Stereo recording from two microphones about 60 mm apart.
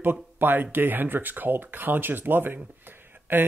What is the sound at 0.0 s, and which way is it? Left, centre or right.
Speech, right.